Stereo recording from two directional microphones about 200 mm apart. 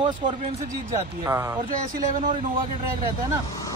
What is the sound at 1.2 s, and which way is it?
Speech, 10° right (ahead or behind).